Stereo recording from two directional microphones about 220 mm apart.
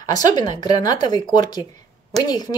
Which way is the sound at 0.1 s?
20° left (ahead or behind).